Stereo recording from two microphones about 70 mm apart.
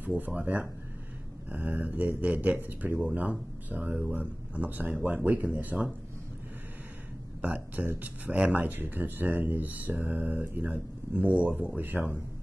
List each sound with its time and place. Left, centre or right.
0.0 s speech: right
7.4 s speech: right